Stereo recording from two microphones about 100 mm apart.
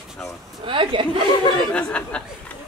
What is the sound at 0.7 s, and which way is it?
Speech, 55° right (ahead or behind).